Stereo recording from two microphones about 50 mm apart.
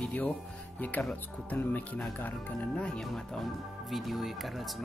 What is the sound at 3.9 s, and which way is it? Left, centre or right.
Speech, centre.